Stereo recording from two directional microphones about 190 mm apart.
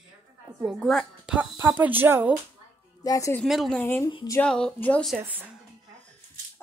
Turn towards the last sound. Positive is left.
turn(degrees=-10)  # may be behind; listen again after turning